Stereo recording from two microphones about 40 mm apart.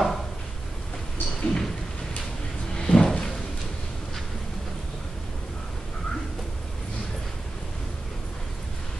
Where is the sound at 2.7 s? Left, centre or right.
Centre.